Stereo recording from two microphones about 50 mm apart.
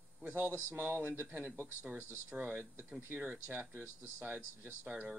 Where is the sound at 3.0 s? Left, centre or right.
Right.